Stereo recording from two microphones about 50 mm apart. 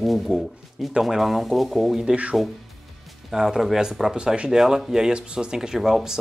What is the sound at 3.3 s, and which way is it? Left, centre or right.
Speech, centre.